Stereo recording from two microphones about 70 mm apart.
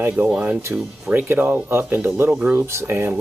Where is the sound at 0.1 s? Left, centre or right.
Centre.